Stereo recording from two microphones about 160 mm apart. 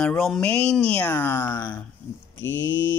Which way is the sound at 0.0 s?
5° left (ahead or behind).